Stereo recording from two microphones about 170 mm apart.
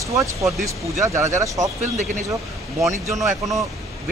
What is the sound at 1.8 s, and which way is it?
Speech, 45° right (ahead or behind).